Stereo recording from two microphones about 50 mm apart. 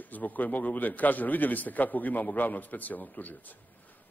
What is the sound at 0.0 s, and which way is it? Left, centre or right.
A man's voice, left.